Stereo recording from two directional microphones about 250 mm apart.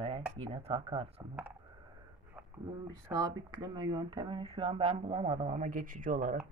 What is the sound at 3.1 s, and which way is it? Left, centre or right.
Speech, centre.